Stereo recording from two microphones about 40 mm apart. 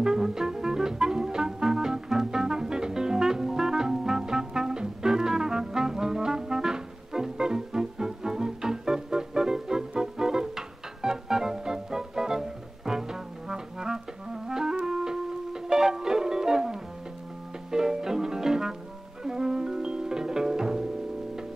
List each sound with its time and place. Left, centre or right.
0.0 s music: centre